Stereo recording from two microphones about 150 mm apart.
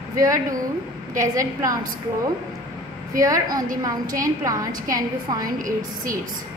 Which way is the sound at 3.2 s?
25° right (ahead or behind).